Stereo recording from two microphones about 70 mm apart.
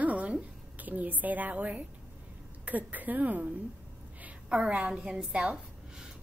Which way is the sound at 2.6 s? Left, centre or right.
Right.